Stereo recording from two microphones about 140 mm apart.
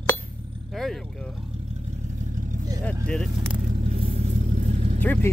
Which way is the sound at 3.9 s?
45° right (ahead or behind).